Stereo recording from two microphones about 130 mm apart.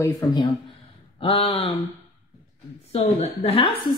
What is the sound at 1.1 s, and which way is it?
Speech, 45° left (ahead or behind).